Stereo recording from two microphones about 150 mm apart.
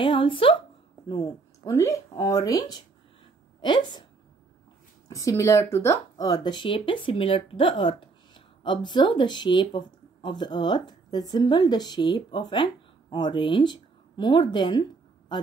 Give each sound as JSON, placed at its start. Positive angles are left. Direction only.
{"t": 0.0, "sound": "a woman's voice", "side_deg": 35}
{"t": 5.0, "sound": "speech", "side_deg": 20}